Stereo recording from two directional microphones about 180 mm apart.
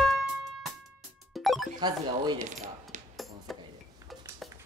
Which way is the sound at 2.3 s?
40° right (ahead or behind).